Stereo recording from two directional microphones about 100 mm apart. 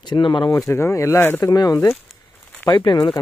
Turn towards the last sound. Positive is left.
turn(degrees=50)  # may be behind; listen again after turning